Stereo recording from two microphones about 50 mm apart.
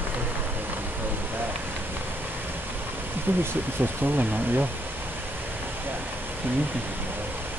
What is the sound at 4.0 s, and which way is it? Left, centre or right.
Speech, right.